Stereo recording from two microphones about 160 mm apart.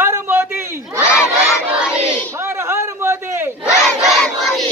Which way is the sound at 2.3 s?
15° right (ahead or behind).